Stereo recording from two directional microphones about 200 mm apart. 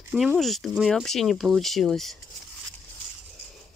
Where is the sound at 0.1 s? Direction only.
5° right (ahead or behind).